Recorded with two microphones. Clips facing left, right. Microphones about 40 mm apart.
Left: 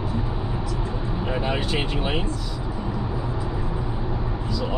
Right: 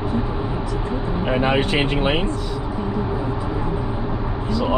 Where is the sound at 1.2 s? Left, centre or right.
Right.